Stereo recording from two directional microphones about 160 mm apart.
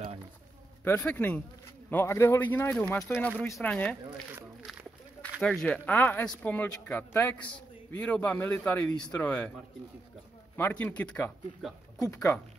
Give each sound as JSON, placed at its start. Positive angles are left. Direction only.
{"t": 0.8, "sound": "speech", "side_deg": 10}
{"t": 5.4, "sound": "speech", "side_deg": 5}
{"t": 10.5, "sound": "speech", "side_deg": 10}